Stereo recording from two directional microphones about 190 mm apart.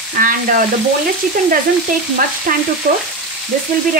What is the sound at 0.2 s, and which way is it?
Speech, 45° right (ahead or behind).